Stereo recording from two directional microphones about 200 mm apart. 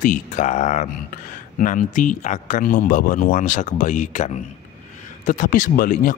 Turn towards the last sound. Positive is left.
turn(degrees=45)  # may be behind; listen again after turning